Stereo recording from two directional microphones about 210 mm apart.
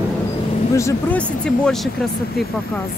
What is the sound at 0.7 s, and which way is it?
Speech, 10° left (ahead or behind).